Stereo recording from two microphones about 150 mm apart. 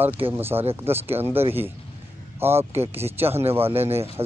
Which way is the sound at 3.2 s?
40° right (ahead or behind).